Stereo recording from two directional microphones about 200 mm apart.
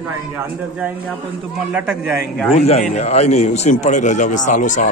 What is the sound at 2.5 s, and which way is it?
A man's voice, 30° left (ahead or behind).